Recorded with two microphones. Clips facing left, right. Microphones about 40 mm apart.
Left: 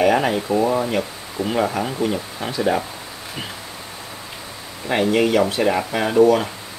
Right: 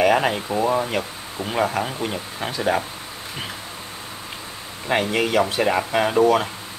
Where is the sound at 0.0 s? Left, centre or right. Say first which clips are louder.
Left 1 dB; right.